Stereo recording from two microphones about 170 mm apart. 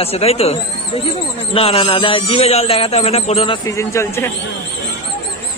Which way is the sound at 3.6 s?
15° left (ahead or behind).